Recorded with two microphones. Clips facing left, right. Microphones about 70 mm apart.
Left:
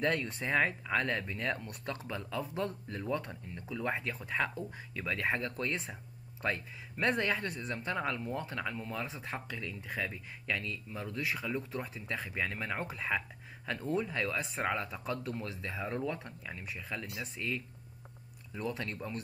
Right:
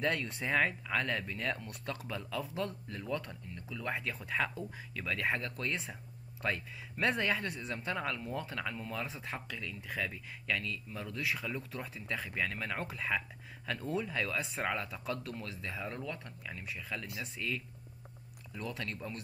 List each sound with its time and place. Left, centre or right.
0.0 s speech: centre; by 3.9 s left
3.9 s speech: centre
15.8 s speech: centre